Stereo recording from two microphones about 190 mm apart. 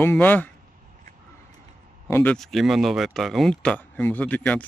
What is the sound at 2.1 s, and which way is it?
Speech, 10° left (ahead or behind).